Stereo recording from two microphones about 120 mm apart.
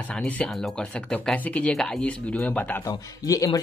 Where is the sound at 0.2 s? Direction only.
5° left (ahead or behind).